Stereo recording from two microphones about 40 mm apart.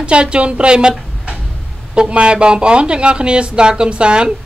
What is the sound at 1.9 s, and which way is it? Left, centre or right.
Speech, right.